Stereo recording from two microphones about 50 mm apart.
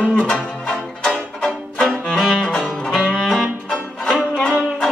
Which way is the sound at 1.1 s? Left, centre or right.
Centre.